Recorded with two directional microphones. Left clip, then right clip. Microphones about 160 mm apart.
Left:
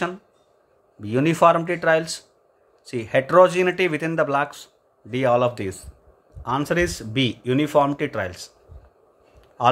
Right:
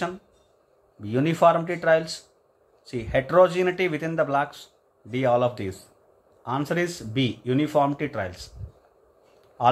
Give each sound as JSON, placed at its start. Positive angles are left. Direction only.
{"t": 1.0, "sound": "speech", "side_deg": 25}
{"t": 9.6, "sound": "a man's voice", "side_deg": 25}